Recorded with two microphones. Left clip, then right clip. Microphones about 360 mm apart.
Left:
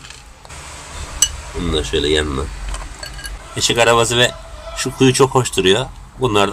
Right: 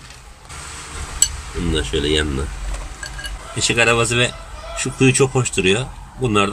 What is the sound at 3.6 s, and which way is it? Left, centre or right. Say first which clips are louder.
A man's voice: left 3 dB; centre.